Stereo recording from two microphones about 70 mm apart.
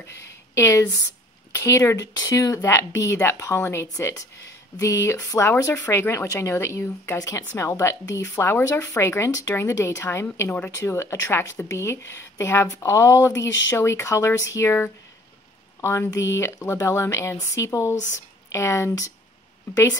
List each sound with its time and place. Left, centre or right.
0.0 s speech: left
2.0 s speech: left
15.8 s speech: left